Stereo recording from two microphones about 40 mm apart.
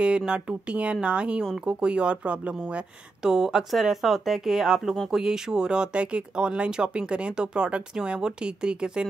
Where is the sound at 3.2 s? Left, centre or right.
Centre.